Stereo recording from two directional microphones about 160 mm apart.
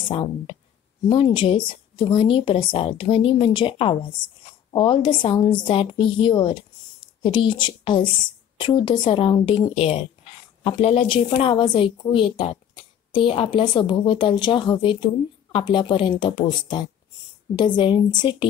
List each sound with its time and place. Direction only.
0.1 s a woman's voice: 35° left (ahead or behind)